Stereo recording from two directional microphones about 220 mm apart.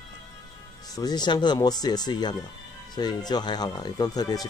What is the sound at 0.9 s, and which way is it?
Speech, 20° left (ahead or behind).